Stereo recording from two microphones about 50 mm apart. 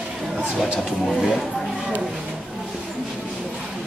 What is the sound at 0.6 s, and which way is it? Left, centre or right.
Speech, centre.